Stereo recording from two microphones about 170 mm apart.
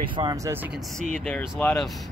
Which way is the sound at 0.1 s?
25° right (ahead or behind).